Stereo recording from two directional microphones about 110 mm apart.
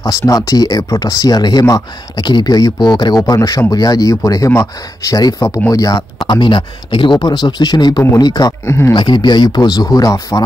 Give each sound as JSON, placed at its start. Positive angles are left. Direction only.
{"t": 0.0, "sound": "speech", "side_deg": 35}
{"t": 6.2, "sound": "speech", "side_deg": 45}
{"t": 8.9, "sound": "speech", "side_deg": 45}